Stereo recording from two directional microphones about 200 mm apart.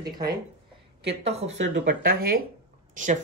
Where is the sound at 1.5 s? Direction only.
55° right (ahead or behind).